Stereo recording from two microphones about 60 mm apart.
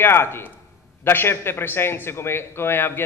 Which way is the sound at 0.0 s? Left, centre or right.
Left.